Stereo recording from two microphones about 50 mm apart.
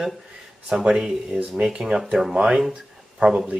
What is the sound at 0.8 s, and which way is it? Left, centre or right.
Speech, centre.